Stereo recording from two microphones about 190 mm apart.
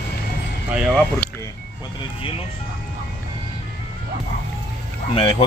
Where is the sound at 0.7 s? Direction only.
Centre (ahead or behind).